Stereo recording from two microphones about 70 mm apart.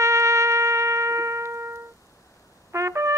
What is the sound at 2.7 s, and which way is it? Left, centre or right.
Brass instrument, right.